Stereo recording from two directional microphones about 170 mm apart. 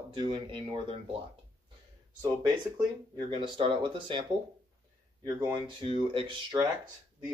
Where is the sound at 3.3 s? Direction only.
30° right (ahead or behind).